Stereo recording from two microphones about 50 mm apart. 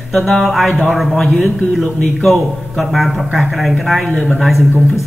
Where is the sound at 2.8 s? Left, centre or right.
Centre.